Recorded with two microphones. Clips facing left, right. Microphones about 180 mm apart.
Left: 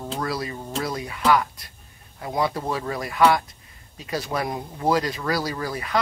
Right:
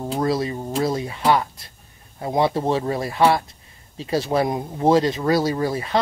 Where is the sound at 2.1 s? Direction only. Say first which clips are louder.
Right 5 dB; 30° right (ahead or behind).